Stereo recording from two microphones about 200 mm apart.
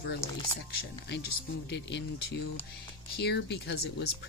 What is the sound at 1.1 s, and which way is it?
Speech, 55° left (ahead or behind).